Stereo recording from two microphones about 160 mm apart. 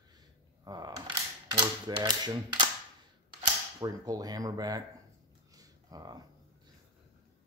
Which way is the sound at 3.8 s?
25° right (ahead or behind).